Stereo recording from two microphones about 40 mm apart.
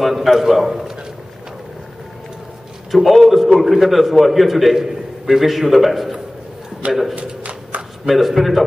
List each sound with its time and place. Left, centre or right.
0.0 s a man's voice: centre
2.9 s a man's voice: centre
7.2 s shuffling cards: right
8.0 s a man's voice: centre